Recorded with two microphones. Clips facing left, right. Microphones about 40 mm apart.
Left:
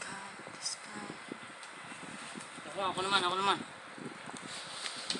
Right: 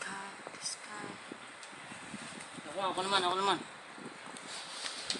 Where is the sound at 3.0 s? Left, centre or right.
Left.